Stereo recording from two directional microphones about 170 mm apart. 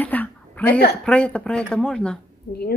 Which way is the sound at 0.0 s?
10° left (ahead or behind).